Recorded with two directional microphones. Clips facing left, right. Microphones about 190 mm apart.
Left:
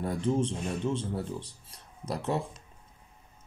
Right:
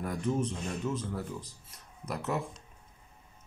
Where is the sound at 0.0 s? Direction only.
30° left (ahead or behind).